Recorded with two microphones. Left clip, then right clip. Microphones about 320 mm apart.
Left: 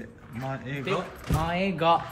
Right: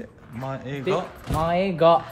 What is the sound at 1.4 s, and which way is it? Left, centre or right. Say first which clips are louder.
Speech: right 6 dB; right.